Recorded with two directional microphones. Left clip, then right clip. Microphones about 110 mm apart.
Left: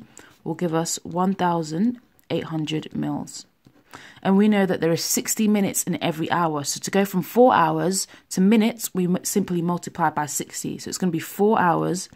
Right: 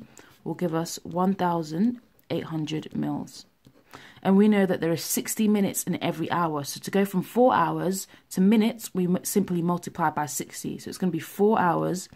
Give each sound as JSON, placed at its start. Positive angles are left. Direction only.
{"t": 0.4, "sound": "speech", "side_deg": 25}